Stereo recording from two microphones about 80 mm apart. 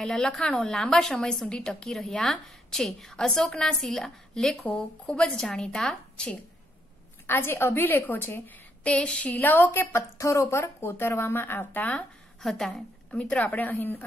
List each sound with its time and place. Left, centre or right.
0.0 s a woman's voice: centre
7.2 s speech: left
8.8 s a woman's voice: centre
9.9 s speech: left
12.4 s a woman's voice: centre; by 14.0 s left